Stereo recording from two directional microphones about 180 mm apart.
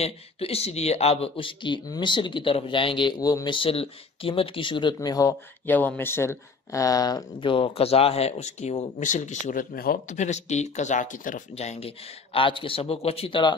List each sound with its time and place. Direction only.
0.0 s speech: 35° left (ahead or behind)
5.7 s speech: 10° left (ahead or behind); by 13.6 s 25° left (ahead or behind)